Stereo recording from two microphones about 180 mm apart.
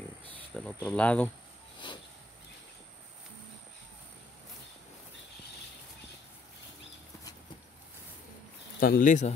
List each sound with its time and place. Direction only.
0.3 s cricket: 5° left (ahead or behind)
0.7 s speech: 10° left (ahead or behind)
8.7 s speech: 55° left (ahead or behind)